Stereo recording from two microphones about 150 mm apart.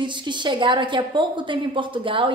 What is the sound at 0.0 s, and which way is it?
A woman's voice, 30° right (ahead or behind).